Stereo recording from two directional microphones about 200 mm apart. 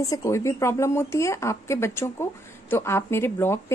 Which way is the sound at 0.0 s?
15° left (ahead or behind).